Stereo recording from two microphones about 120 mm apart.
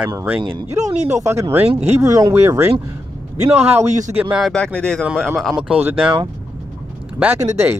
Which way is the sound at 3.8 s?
90° right.